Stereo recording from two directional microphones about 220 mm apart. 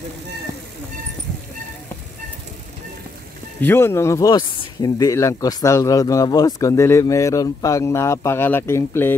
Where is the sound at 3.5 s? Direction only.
10° left (ahead or behind).